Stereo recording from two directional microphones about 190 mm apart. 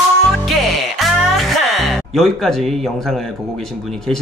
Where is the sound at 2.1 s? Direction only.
Centre (ahead or behind).